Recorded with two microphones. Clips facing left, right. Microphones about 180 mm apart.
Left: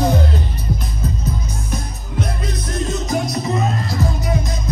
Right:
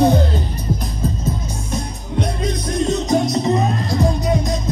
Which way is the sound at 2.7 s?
20° right (ahead or behind).